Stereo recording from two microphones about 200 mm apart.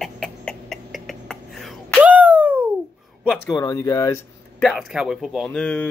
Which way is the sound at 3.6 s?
15° left (ahead or behind).